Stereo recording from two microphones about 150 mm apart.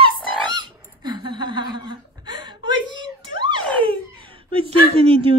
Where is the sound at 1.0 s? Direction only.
30° right (ahead or behind).